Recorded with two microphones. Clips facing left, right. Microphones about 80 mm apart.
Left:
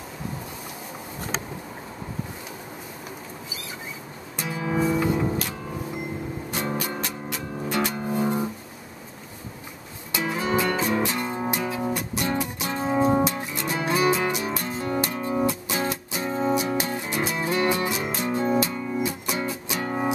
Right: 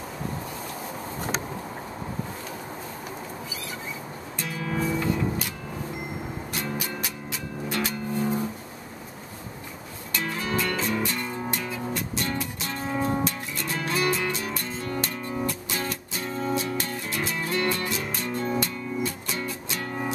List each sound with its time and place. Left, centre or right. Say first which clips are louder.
4.4 s music: left 4 dB; centre
7.7 s music: left 3 dB; centre
10.1 s music: left 4 dB; centre